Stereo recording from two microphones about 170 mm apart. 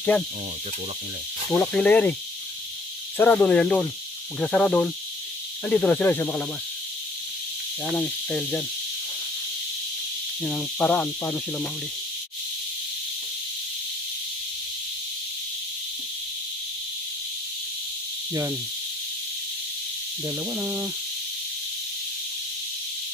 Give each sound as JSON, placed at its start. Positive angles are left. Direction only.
{"t": 1.5, "sound": "speech", "side_deg": 10}
{"t": 3.2, "sound": "speech", "side_deg": 10}
{"t": 7.9, "sound": "speech", "side_deg": 10}
{"t": 10.4, "sound": "speech", "side_deg": 5}
{"t": 18.3, "sound": "speech", "side_deg": -20}
{"t": 20.2, "sound": "speech", "side_deg": -15}